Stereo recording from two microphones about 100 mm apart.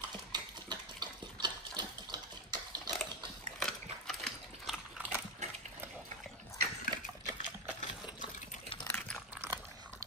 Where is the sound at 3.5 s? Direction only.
5° left (ahead or behind).